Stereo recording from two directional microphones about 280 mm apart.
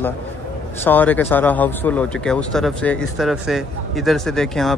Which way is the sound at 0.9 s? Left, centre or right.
Centre.